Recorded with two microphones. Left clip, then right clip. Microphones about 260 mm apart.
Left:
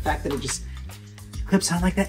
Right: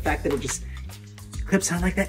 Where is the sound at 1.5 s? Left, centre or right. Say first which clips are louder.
Left 1 dB; centre.